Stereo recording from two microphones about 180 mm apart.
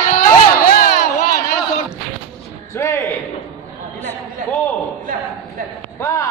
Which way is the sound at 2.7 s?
15° left (ahead or behind).